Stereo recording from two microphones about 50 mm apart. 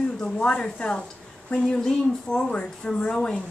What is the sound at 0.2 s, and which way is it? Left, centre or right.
A woman's voice, centre.